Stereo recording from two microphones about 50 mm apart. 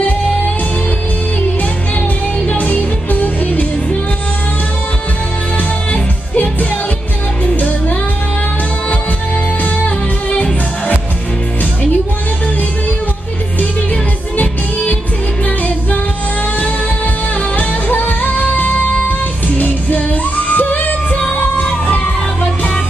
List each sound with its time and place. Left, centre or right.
2.4 s music: left
6.3 s music: left
9.8 s music: left
14.3 s music: left
17.6 s music: left